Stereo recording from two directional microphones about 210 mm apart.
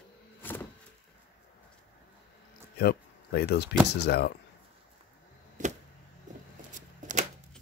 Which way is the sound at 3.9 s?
50° left (ahead or behind).